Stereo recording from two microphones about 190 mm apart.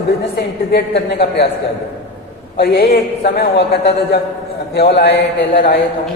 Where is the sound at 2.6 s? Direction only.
55° left (ahead or behind).